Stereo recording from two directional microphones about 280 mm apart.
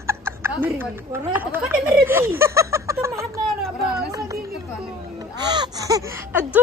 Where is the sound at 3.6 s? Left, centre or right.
Centre.